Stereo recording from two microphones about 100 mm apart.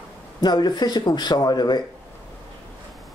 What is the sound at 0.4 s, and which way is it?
Speech, 45° left (ahead or behind).